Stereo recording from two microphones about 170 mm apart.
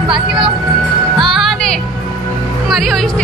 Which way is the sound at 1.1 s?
Centre (ahead or behind).